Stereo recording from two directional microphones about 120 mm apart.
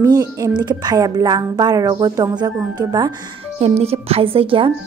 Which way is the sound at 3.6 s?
60° right (ahead or behind).